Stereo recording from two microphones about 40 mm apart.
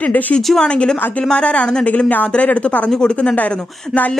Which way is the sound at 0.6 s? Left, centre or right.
Left.